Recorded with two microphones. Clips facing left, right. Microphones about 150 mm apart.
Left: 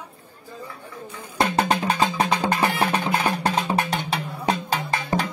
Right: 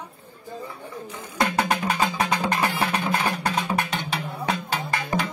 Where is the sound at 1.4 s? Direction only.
25° left (ahead or behind).